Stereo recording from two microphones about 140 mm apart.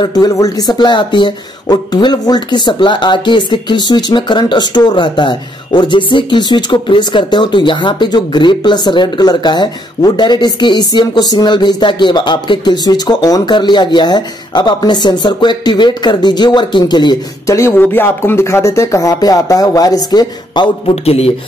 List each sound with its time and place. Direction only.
0.0 s speech: 30° left (ahead or behind)
20.9 s a man's voice: 45° left (ahead or behind)